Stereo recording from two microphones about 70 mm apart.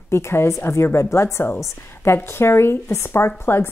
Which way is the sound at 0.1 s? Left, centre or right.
Left.